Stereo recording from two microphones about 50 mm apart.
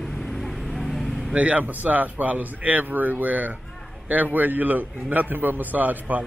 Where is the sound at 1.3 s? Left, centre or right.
Right.